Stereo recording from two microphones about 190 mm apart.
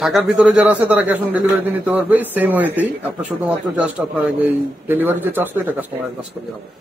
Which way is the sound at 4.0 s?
5° right (ahead or behind).